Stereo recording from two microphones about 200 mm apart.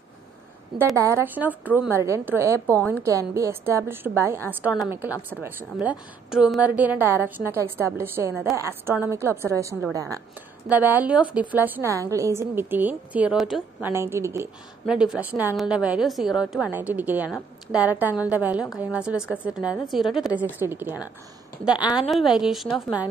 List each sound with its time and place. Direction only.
0.9 s a woman's voice: 10° right (ahead or behind)
2.7 s a woman's voice: 10° left (ahead or behind)
3.0 s a woman's voice: 15° right (ahead or behind)
22.1 s a woman's voice: centre (ahead or behind)